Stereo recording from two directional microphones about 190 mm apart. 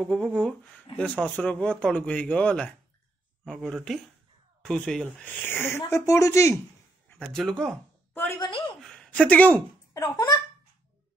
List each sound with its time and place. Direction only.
0.0 s speech: 5° left (ahead or behind)
7.1 s speech: 5° left (ahead or behind)
7.7 s a sound: 10° left (ahead or behind)
8.4 s speech: 25° left (ahead or behind)
8.8 s a sound: 5° left (ahead or behind)
10.0 s speech: 20° left (ahead or behind)